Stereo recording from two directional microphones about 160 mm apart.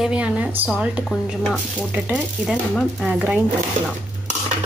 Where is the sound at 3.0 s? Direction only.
5° right (ahead or behind).